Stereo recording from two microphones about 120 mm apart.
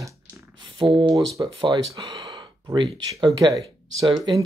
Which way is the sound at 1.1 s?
30° right (ahead or behind).